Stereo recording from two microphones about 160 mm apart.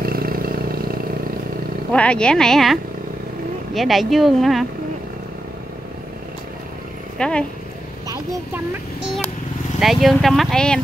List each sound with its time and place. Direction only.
0.0 s vehicle: 65° right (ahead or behind)
1.9 s speech: 5° left (ahead or behind)
7.2 s speech: 5° left (ahead or behind)
9.8 s speech: centre (ahead or behind)